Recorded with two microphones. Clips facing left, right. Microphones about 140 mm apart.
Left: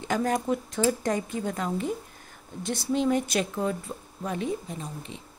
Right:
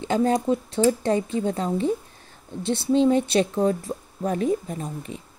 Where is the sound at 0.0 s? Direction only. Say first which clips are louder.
Right 5 dB; 25° right (ahead or behind).